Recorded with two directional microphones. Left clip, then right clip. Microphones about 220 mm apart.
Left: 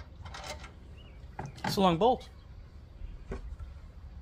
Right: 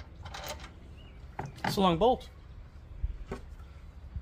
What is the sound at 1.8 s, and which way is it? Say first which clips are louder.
Speech: even; 15° left (ahead or behind).